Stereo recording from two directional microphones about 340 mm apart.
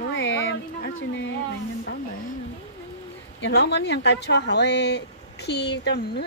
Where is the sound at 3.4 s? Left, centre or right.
Left.